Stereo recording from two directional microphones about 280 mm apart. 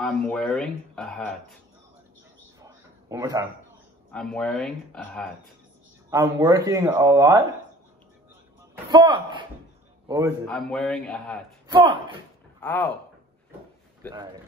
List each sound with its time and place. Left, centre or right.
0.0 s speech: centre
2.6 s a sound: centre
4.1 s speech: centre
6.0 s speech: centre
8.9 s a man's voice: centre
10.4 s speech: centre
11.6 s speech: centre
12.6 s speech: centre
14.1 s speech: centre